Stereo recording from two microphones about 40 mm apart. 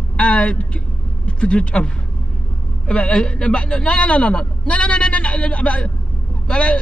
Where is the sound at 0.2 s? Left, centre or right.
Left.